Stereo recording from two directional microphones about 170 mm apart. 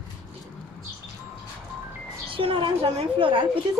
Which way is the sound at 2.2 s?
30° right (ahead or behind).